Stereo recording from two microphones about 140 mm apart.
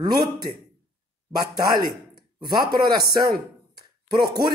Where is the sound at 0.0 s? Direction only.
30° right (ahead or behind).